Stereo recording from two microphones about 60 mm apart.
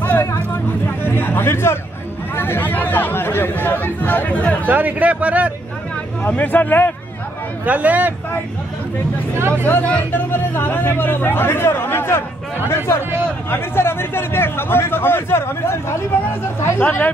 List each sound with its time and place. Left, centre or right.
0.0 s a sound: left
2.3 s a man's voice: left
4.6 s speech: right
6.2 s a man's voice: left
7.6 s speech: right
9.8 s a man's voice: left